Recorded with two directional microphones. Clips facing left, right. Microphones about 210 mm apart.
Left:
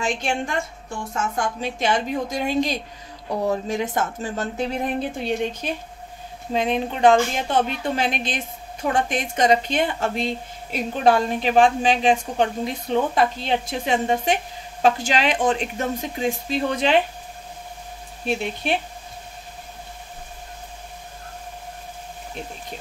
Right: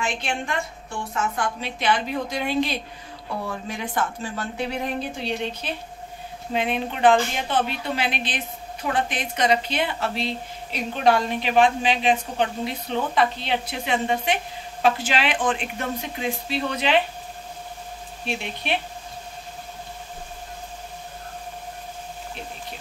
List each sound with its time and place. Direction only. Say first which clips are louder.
0.0 s speech: left 3 dB; 45° left (ahead or behind)
18.2 s speech: left 5 dB; 45° left (ahead or behind)